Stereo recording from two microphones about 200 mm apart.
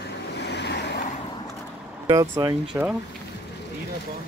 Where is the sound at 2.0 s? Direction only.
15° right (ahead or behind).